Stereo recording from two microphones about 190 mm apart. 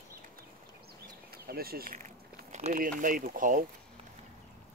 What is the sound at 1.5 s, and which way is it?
Speech, 50° right (ahead or behind).